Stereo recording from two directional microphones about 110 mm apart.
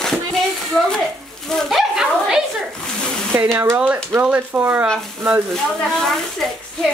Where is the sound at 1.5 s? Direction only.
Centre (ahead or behind).